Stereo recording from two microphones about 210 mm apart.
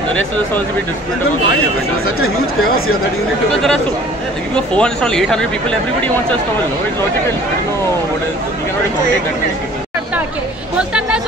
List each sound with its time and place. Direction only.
2.0 s speech: 90° left
4.7 s a man's voice: 5° left (ahead or behind)
10.8 s a man's voice: 5° right (ahead or behind)